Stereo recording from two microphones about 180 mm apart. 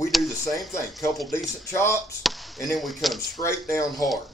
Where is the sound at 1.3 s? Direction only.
15° left (ahead or behind).